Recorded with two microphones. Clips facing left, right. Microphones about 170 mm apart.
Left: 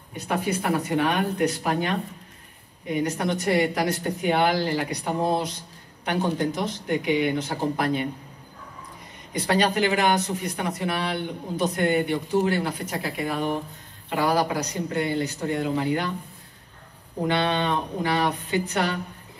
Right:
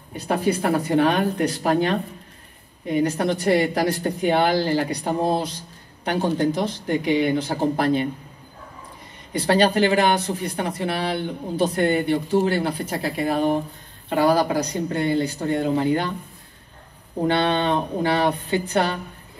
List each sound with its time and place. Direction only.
0.1 s speech: 30° right (ahead or behind)
9.3 s speech: 30° right (ahead or behind)
17.3 s speech: 30° right (ahead or behind)